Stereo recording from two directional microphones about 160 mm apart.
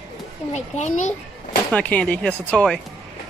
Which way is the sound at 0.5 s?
45° left (ahead or behind).